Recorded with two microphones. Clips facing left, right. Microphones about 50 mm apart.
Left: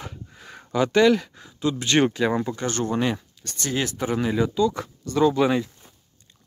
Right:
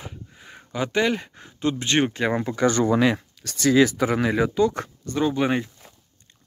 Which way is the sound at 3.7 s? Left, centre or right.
Right.